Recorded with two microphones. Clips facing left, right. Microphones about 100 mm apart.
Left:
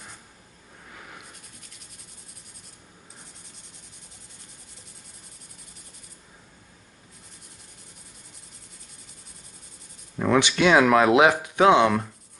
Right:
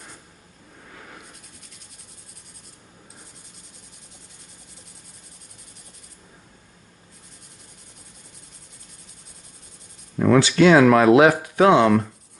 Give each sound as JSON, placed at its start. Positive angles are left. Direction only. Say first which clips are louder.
{"t": 10.2, "sound": "speech", "louder": "right 5 dB", "side_deg": 15}